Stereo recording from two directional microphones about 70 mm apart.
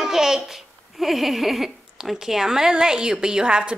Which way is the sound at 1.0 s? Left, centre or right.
Centre.